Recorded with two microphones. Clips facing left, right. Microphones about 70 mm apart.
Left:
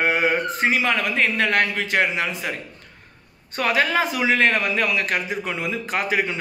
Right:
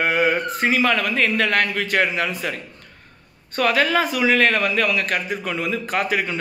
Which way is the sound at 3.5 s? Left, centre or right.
Left.